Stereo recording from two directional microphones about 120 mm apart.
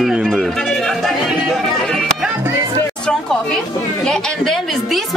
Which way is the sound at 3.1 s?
5° left (ahead or behind).